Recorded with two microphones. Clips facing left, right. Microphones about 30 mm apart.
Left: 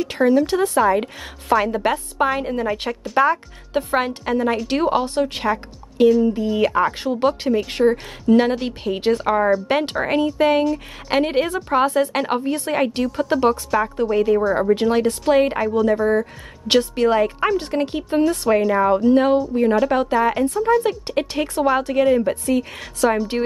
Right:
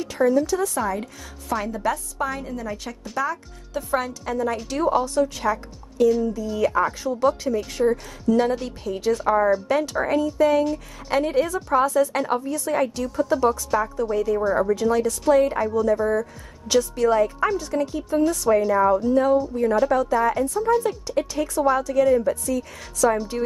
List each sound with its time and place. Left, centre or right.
0.1 s speech: left
19.5 s a woman's voice: left
19.9 s speech: left